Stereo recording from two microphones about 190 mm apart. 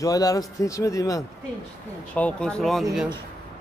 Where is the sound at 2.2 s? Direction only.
5° left (ahead or behind).